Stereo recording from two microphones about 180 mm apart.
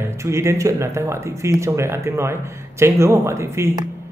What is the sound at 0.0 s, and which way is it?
Speech, 15° right (ahead or behind).